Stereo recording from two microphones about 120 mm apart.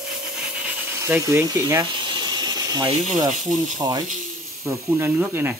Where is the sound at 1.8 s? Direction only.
40° right (ahead or behind).